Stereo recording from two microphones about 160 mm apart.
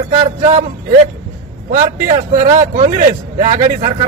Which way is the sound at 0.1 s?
50° right (ahead or behind).